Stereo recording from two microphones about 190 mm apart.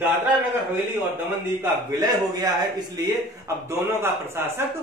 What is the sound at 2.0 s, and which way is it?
A man's voice, 20° right (ahead or behind).